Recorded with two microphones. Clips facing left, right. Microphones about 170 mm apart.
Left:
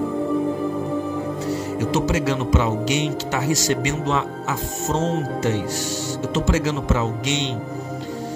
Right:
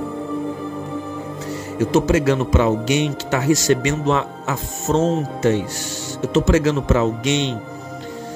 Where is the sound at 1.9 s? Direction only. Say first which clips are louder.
Right 6 dB; 55° right (ahead or behind).